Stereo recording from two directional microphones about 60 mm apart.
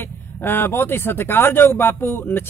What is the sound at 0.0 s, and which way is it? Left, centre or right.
Speech, left.